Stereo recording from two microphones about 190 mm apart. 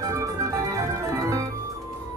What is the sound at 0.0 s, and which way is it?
Organ, 15° right (ahead or behind).